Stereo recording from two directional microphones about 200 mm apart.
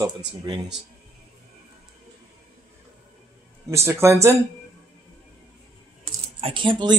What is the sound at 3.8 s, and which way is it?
Speech, 15° right (ahead or behind).